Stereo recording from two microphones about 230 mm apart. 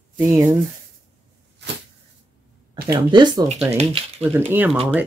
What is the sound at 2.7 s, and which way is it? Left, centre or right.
Speech, centre.